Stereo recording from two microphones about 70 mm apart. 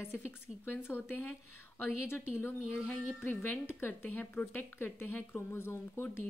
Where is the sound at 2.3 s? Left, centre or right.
Left.